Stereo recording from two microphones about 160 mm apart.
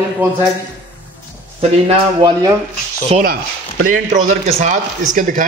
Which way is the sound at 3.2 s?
65° right (ahead or behind).